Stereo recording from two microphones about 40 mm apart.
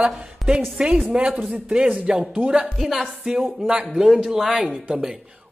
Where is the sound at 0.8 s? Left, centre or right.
Right.